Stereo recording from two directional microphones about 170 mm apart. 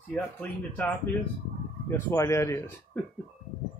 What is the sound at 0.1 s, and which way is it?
Speech, 10° left (ahead or behind).